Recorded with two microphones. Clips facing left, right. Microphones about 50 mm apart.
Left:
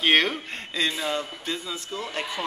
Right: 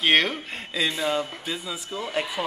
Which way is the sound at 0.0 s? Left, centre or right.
Centre.